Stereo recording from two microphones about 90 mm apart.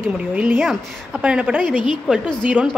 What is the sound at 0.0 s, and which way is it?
A woman's voice, 15° right (ahead or behind).